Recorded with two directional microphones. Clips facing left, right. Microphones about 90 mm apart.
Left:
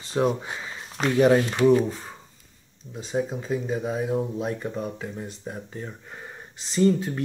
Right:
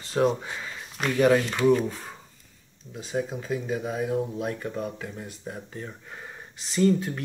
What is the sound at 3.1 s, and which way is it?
Speech, 15° left (ahead or behind).